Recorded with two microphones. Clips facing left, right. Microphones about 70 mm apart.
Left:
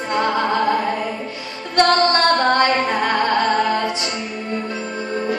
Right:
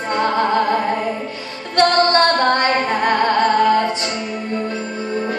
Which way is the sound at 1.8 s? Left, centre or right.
Right.